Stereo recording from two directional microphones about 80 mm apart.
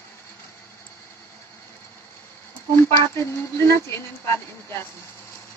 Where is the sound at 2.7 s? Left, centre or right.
Left.